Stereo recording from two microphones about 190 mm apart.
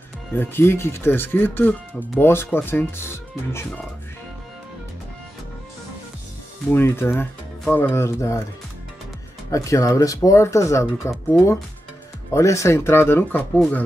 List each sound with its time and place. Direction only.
0.3 s speech: 10° left (ahead or behind)
6.7 s speech: 10° left (ahead or behind)
9.5 s speech: 15° left (ahead or behind)